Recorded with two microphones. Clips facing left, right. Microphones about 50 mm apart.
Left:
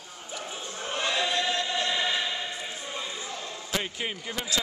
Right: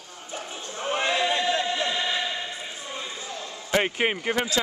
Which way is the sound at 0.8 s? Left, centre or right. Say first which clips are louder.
Right 4 dB; right.